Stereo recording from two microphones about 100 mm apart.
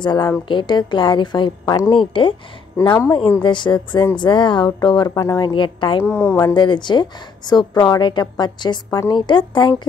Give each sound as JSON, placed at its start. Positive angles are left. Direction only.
{"t": 0.0, "sound": "a woman's voice", "side_deg": 50}
{"t": 1.9, "sound": "a woman's voice", "side_deg": 60}
{"t": 2.8, "sound": "speech", "side_deg": 30}
{"t": 3.4, "sound": "a woman's voice", "side_deg": 50}
{"t": 5.5, "sound": "a woman's voice", "side_deg": 55}
{"t": 6.1, "sound": "speech", "side_deg": 25}
{"t": 6.4, "sound": "a woman's voice", "side_deg": 50}